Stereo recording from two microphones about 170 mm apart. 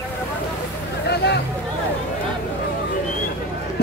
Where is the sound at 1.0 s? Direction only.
75° left (ahead or behind).